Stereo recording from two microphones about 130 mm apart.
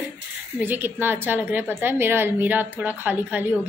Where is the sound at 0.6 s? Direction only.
15° right (ahead or behind).